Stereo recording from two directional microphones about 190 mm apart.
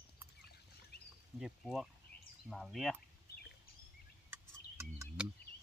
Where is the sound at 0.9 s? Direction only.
60° left (ahead or behind).